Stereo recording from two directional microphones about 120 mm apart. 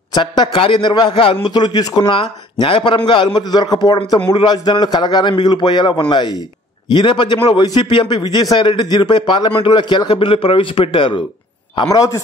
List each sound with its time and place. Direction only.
0.1 s a man's voice: 40° left (ahead or behind)
2.1 s a man's voice: 45° left (ahead or behind)
11.9 s speech: 25° left (ahead or behind)